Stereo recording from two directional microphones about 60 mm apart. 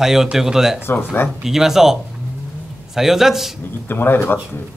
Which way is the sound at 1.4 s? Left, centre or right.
Centre.